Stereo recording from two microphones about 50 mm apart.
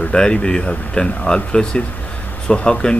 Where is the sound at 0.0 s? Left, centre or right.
Centre.